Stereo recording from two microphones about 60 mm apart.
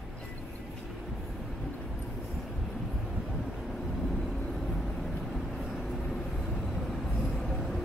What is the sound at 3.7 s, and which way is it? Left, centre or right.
Vehicle, centre.